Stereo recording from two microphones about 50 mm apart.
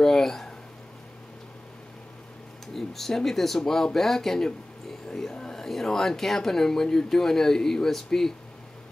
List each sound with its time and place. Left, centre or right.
0.0 s speech: centre
2.7 s speech: centre